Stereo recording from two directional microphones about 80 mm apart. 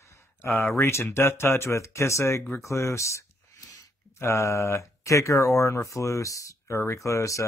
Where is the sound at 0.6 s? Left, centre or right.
Left.